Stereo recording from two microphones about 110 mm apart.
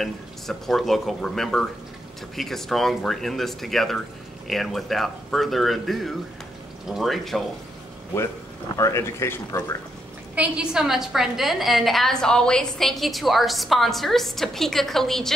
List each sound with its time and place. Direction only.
0.0 s a woman's voice: 5° left (ahead or behind)
8.7 s speech: 25° left (ahead or behind)
10.3 s a woman's voice: 10° right (ahead or behind)